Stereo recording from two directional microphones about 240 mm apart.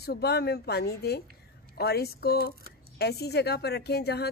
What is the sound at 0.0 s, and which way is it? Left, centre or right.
A woman's voice, left.